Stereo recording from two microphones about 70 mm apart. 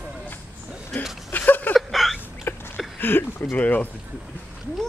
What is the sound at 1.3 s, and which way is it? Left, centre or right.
Chuckle, left.